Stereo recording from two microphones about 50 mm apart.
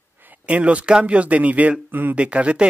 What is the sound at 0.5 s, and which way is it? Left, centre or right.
Speech, right.